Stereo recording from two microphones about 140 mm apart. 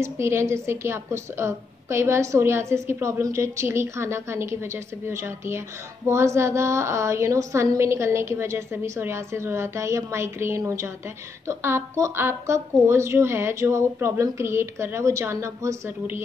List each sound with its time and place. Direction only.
0.0 s a woman's voice: 20° right (ahead or behind)